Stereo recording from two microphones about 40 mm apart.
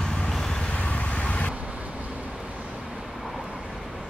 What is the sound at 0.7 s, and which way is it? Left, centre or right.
Vehicle, left.